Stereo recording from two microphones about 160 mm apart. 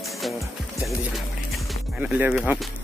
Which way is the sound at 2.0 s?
10° right (ahead or behind).